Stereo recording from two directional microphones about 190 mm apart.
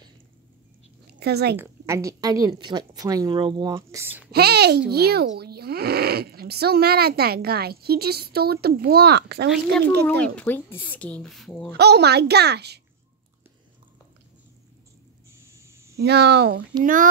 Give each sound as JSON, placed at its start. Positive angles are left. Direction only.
{"t": 1.2, "sound": "speech", "side_deg": -60}
{"t": 1.6, "sound": "a woman's voice", "side_deg": -15}
{"t": 4.3, "sound": "speech", "side_deg": -55}
{"t": 9.5, "sound": "speech", "side_deg": 5}
{"t": 11.7, "sound": "speech", "side_deg": -60}
{"t": 15.6, "sound": "a sound", "side_deg": -15}
{"t": 16.0, "sound": "speech", "side_deg": -60}
{"t": 16.8, "sound": "speech", "side_deg": -45}